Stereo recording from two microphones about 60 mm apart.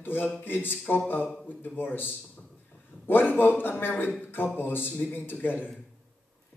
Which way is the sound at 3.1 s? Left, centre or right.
Left.